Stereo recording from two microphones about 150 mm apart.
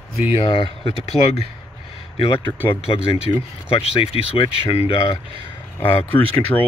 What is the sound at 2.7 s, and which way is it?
Speech, 40° left (ahead or behind).